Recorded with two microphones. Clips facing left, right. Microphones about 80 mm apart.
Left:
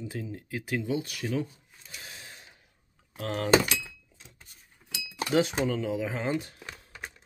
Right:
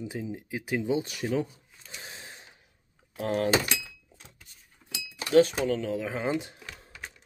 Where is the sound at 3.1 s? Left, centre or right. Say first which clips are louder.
Right 4 dB; centre.